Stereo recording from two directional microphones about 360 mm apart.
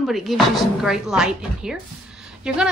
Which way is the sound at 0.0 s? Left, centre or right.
Centre.